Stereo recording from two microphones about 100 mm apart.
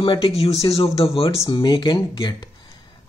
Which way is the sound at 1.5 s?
55° left (ahead or behind).